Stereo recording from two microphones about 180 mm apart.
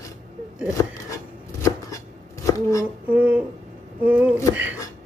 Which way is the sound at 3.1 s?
10° right (ahead or behind).